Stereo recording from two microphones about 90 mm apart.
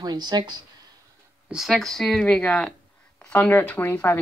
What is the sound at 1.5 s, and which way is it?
Speech, centre (ahead or behind).